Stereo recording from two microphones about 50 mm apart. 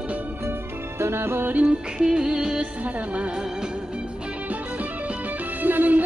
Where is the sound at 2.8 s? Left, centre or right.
Right.